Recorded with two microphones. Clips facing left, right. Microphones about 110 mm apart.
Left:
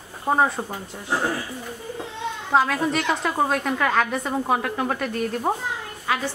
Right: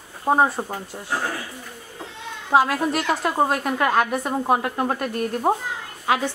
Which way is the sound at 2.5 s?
5° right (ahead or behind).